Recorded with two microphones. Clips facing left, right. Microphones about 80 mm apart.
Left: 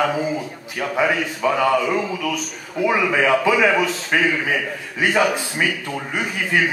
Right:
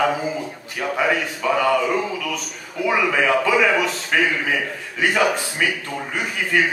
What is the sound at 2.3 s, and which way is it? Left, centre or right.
A man's voice, centre.